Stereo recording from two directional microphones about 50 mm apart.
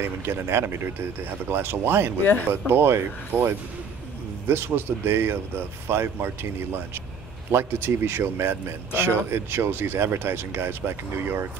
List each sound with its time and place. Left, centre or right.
0.0 s speech: right